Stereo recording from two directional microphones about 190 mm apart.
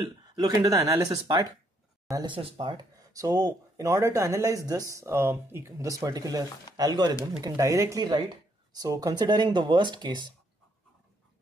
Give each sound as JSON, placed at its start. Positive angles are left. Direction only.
{"t": 0.0, "sound": "speech", "side_deg": -20}